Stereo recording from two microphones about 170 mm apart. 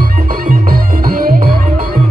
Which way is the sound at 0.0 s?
55° right (ahead or behind).